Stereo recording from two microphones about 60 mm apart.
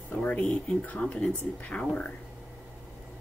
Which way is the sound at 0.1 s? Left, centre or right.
Left.